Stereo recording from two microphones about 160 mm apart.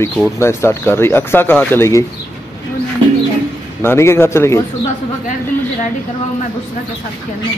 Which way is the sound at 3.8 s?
15° left (ahead or behind).